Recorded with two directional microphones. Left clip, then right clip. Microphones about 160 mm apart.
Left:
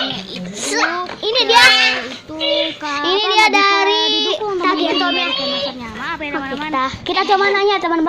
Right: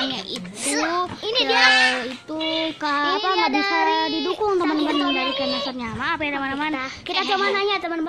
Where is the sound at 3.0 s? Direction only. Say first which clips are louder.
Left 8 dB; 15° left (ahead or behind).